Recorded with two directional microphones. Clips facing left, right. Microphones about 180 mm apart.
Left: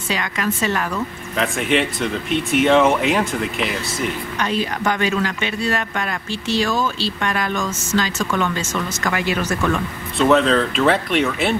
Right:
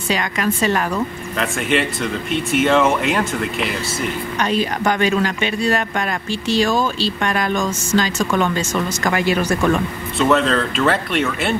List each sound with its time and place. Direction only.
0.1 s a woman's voice: 35° right (ahead or behind)
1.3 s speech: centre (ahead or behind)
4.8 s a woman's voice: 35° right (ahead or behind)
7.2 s a woman's voice: 40° right (ahead or behind)
10.1 s speech: centre (ahead or behind)